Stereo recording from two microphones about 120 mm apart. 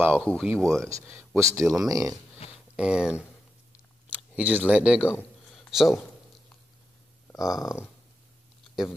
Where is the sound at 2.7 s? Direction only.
5° right (ahead or behind).